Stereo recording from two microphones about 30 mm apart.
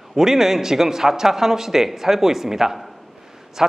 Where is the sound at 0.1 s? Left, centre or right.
Centre.